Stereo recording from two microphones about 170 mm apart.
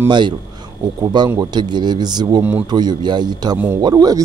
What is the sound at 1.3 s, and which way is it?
Speech, 25° right (ahead or behind).